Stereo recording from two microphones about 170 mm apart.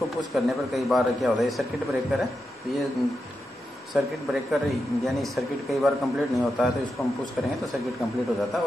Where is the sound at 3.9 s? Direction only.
Centre (ahead or behind).